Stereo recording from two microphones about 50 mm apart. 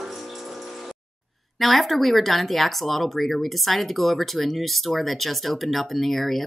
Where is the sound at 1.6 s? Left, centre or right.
Centre.